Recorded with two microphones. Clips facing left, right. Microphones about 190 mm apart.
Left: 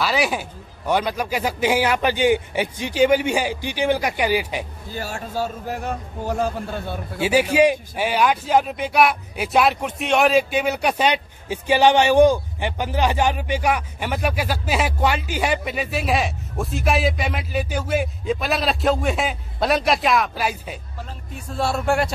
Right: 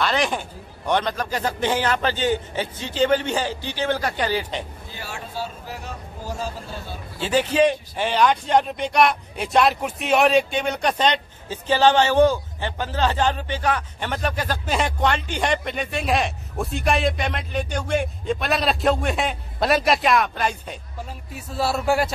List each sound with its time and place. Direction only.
0.0 s a man's voice: 5° left (ahead or behind)
4.9 s a man's voice: 45° left (ahead or behind); by 7.0 s 60° left (ahead or behind)
7.2 s speech: 10° left (ahead or behind)